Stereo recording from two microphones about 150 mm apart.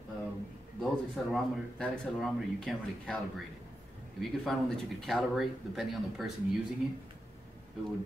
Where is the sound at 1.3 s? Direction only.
Centre (ahead or behind).